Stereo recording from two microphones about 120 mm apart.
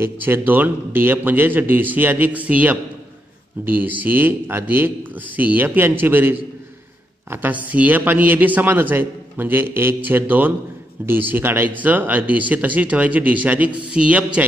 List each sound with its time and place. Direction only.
0.0 s a man's voice: 15° right (ahead or behind)